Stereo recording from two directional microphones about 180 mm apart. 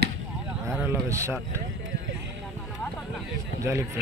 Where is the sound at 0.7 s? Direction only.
15° right (ahead or behind).